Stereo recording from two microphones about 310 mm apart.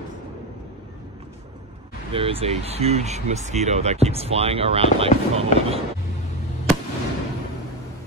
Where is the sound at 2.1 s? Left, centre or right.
Centre.